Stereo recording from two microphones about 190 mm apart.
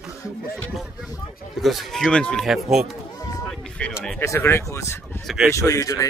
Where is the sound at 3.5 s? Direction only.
5° left (ahead or behind).